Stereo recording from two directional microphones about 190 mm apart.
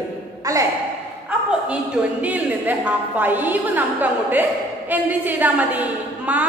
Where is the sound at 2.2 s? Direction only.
10° right (ahead or behind).